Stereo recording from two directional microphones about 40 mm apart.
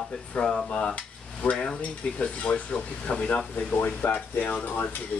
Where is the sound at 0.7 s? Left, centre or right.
Left.